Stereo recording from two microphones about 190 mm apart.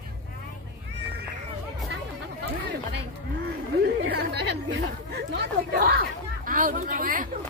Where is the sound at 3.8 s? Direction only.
60° right (ahead or behind).